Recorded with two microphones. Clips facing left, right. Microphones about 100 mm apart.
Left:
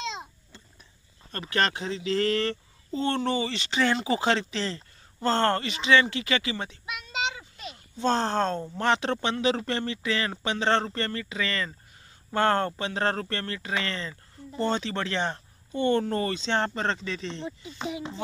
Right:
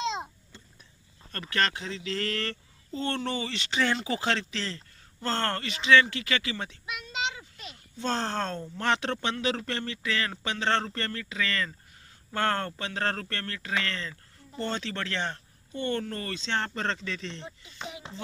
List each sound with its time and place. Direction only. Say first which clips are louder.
1.3 s speech: left 2 dB; 15° left (ahead or behind)